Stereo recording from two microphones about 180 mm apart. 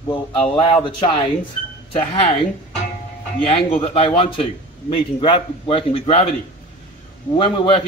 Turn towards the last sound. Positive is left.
turn(degrees=25)  # may be behind; listen again after turning